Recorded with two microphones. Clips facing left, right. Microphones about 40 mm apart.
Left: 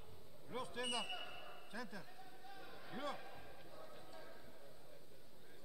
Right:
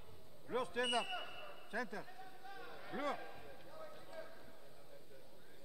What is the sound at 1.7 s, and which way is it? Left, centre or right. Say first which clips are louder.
Speech: right 7 dB; right.